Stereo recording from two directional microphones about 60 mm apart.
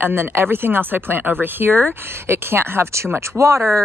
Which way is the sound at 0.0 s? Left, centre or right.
Right.